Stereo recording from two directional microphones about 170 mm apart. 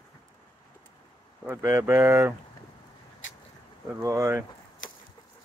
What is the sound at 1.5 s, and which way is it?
Speech, 15° right (ahead or behind).